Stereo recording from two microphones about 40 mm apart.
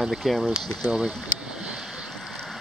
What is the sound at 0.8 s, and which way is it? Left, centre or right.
Speech, right.